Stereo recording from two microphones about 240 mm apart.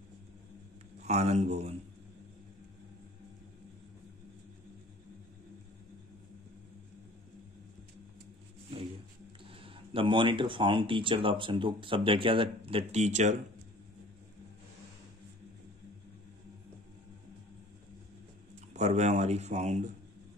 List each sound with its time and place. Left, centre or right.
1.0 s speech: right
9.4 s speech: right
18.7 s speech: right